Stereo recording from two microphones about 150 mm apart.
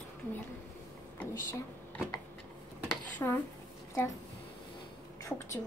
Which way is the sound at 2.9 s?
10° left (ahead or behind).